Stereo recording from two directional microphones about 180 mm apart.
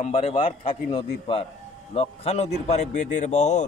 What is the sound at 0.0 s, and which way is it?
A man's voice, 30° left (ahead or behind).